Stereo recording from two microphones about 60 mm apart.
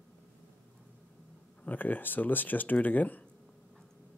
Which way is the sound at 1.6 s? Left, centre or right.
Left.